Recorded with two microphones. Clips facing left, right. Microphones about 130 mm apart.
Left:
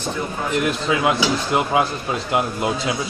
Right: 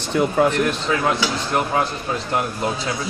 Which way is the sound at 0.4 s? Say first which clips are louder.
Right 10 dB; 75° right (ahead or behind).